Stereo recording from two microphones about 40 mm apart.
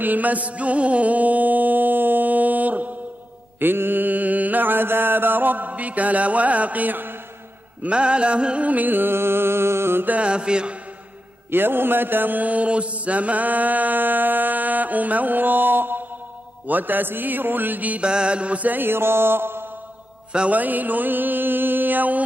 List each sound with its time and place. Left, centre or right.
0.0 s music: right
3.5 s mantra: right
7.8 s mantra: right
8.6 s music: right
10.2 s mantra: right
11.5 s mantra: right
18.0 s mantra: right
18.7 s mantra: right
20.5 s mantra: right